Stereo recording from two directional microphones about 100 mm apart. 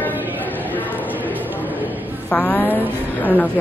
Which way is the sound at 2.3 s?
15° left (ahead or behind).